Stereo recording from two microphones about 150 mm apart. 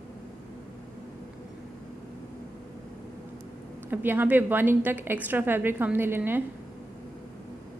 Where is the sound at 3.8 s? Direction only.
15° right (ahead or behind).